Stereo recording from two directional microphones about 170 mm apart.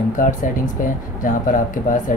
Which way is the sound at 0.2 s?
55° left (ahead or behind).